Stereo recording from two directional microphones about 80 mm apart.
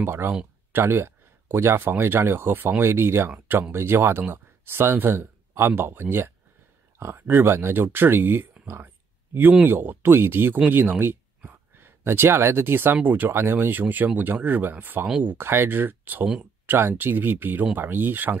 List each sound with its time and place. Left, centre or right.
0.0 s speech: right